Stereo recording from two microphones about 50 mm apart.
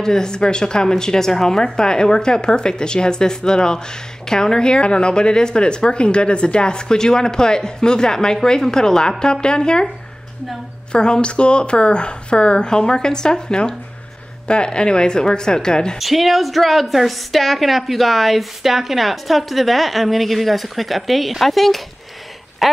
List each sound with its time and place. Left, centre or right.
0.0 s a woman's voice: centre
10.9 s a woman's voice: centre
16.0 s a woman's voice: centre
22.6 s a sound: centre